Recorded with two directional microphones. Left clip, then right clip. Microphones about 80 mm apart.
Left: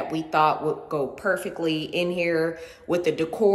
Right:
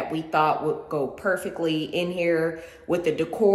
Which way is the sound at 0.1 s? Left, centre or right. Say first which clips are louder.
Left 1 dB; left.